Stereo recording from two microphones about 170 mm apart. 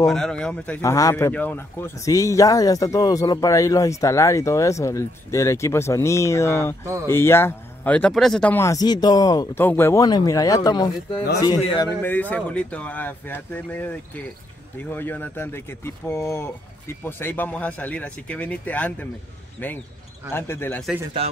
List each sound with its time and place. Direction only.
0.0 s speech: 5° left (ahead or behind); by 11.9 s 30° left (ahead or behind)
12.0 s speech: 10° left (ahead or behind)
20.3 s speech: 15° left (ahead or behind)